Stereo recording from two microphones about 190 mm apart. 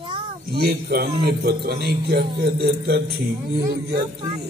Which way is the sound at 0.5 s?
55° right (ahead or behind).